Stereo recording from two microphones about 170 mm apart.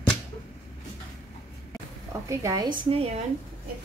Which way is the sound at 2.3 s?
20° right (ahead or behind).